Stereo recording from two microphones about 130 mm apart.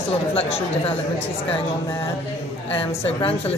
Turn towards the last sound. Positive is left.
turn(degrees=45)  # may be behind; listen again after turning